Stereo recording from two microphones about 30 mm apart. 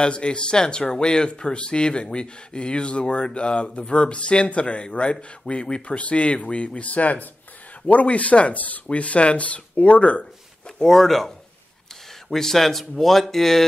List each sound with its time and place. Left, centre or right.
0.0 s speech: left
8.9 s speech: left
10.8 s speech: centre